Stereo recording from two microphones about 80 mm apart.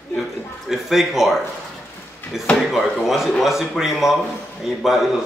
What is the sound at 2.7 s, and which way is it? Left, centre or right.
A man's voice, centre.